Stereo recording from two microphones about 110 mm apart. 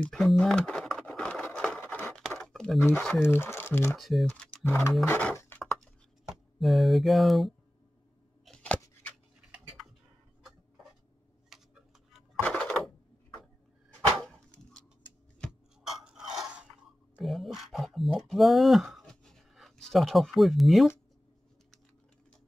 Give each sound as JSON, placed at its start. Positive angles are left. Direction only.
{"t": 0.0, "sound": "a sound", "side_deg": 5}
{"t": 3.2, "sound": "speech", "side_deg": 20}
{"t": 4.0, "sound": "speech", "side_deg": 0}
{"t": 4.3, "sound": "speech", "side_deg": 10}
{"t": 6.2, "sound": "speech", "side_deg": 0}
{"t": 11.5, "sound": "tick-tock", "side_deg": 0}
{"t": 12.4, "sound": "a sound", "side_deg": 10}
{"t": 15.8, "sound": "chewing", "side_deg": -5}
{"t": 17.2, "sound": "a sound", "side_deg": 0}